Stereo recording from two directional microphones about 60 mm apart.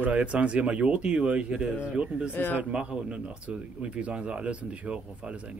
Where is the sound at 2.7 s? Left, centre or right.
Centre.